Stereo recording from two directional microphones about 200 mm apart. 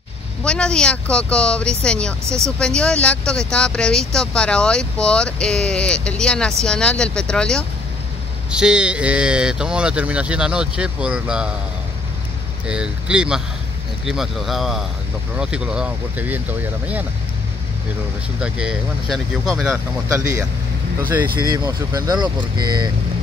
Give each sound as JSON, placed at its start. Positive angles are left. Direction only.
{"t": 0.4, "sound": "speech", "side_deg": 5}
{"t": 2.2, "sound": "speech", "side_deg": -15}
{"t": 2.6, "sound": "speech", "side_deg": 5}
{"t": 12.6, "sound": "speech", "side_deg": -5}
{"t": 18.4, "sound": "speech", "side_deg": -5}
{"t": 20.1, "sound": "speech", "side_deg": -15}